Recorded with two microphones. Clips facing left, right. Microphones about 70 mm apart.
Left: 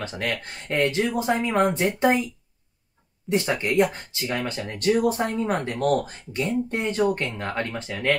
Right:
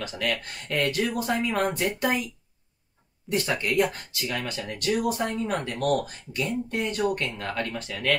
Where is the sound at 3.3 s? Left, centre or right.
Left.